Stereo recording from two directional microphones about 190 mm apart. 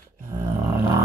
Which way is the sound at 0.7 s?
15° right (ahead or behind).